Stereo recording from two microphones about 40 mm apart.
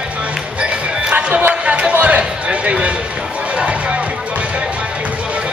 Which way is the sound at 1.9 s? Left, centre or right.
Right.